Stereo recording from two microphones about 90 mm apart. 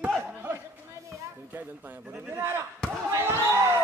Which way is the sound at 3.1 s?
30° right (ahead or behind).